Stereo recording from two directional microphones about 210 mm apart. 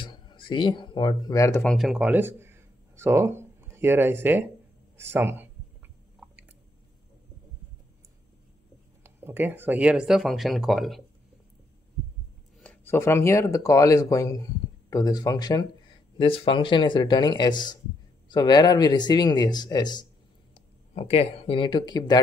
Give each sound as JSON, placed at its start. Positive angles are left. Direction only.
{"t": 0.0, "sound": "speech", "side_deg": 20}
{"t": 1.6, "sound": "speech", "side_deg": 0}
{"t": 9.0, "sound": "speech", "side_deg": -10}
{"t": 12.6, "sound": "speech", "side_deg": 10}